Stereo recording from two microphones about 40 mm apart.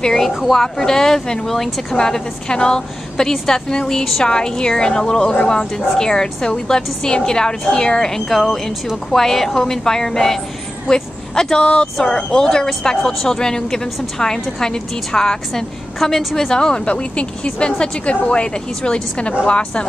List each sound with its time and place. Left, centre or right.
0.0 s a woman's voice: centre
8.3 s a woman's voice: centre
11.6 s speech: left
12.0 s a woman's voice: centre
16.0 s a woman's voice: centre
16.3 s a woman's voice: centre